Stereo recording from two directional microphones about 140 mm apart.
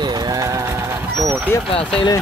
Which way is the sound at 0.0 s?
25° right (ahead or behind).